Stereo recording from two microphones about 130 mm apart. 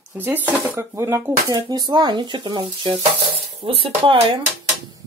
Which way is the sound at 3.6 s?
45° right (ahead or behind).